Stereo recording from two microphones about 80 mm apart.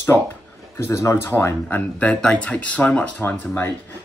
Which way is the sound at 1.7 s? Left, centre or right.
Centre.